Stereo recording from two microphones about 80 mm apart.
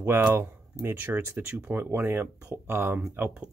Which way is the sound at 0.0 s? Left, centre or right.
Right.